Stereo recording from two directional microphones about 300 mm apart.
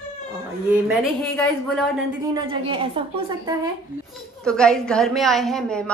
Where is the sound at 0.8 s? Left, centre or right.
Centre.